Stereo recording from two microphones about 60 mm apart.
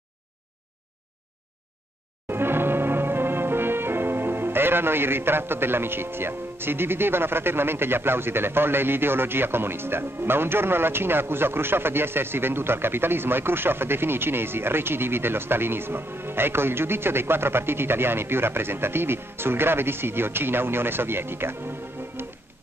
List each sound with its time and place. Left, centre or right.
2.2 s music: right